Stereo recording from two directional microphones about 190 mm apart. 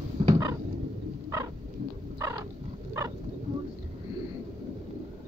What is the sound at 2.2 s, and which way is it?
Roaring cats, 15° right (ahead or behind).